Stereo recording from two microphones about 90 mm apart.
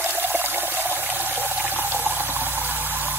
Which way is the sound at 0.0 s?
20° right (ahead or behind).